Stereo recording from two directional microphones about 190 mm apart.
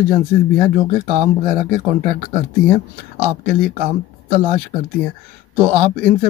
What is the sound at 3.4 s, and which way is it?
Speech, 45° right (ahead or behind).